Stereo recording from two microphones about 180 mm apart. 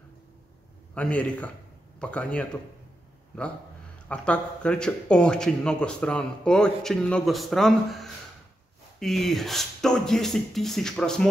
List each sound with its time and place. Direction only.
0.9 s a man's voice: 5° left (ahead or behind)
4.1 s a man's voice: 5° left (ahead or behind)